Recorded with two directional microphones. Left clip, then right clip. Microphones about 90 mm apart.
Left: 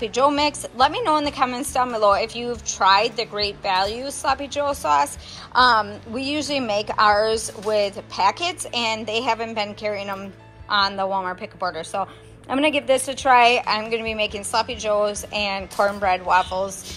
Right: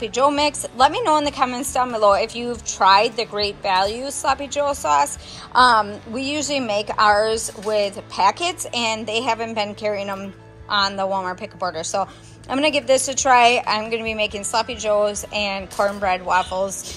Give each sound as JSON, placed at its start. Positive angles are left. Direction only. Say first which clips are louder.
{"t": 0.0, "sound": "a woman's voice", "louder": "right 1 dB", "side_deg": -25}
{"t": 11.7, "sound": "speech", "louder": "right 3 dB", "side_deg": -45}
{"t": 12.4, "sound": "a woman's voice", "louder": "right 1 dB", "side_deg": -30}